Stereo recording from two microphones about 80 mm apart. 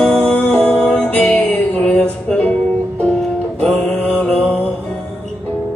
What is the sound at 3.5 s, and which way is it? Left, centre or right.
Mantra, centre.